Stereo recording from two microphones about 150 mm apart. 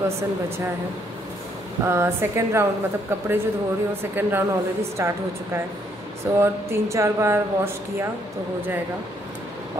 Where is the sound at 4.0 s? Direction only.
15° right (ahead or behind).